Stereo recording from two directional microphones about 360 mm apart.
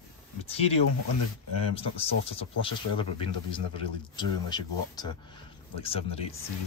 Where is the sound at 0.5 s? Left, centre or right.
Centre.